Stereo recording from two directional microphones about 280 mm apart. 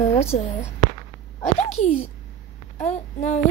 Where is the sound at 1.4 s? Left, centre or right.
Left.